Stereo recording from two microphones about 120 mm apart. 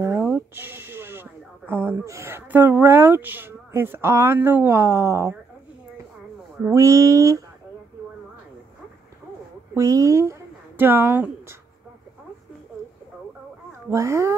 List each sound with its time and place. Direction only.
0.6 s speech: 15° right (ahead or behind)
6.7 s speech: 25° right (ahead or behind)
9.8 s a woman's voice: 25° right (ahead or behind)
13.7 s a child's voice: 25° right (ahead or behind)